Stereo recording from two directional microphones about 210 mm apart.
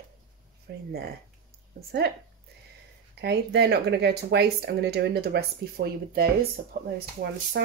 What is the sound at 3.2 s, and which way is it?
Speech, 50° right (ahead or behind).